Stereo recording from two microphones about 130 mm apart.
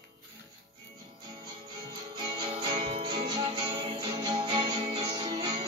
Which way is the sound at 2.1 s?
35° right (ahead or behind).